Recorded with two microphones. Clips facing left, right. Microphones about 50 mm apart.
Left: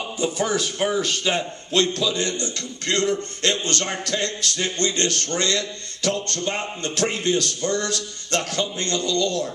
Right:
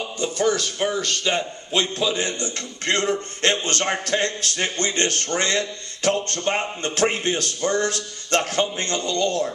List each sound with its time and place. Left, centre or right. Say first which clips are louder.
0.2 s speech: right 1 dB; centre
2.0 s a man's voice: even; right